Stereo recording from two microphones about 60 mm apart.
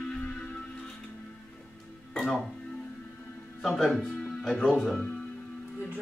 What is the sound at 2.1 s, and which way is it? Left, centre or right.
Speech, centre.